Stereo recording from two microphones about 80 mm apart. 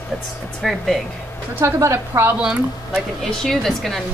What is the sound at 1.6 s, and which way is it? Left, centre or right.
Speech, right.